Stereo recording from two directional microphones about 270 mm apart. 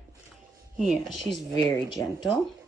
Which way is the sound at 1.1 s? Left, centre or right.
Right.